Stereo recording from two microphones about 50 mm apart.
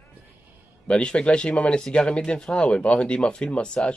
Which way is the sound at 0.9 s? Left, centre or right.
Centre.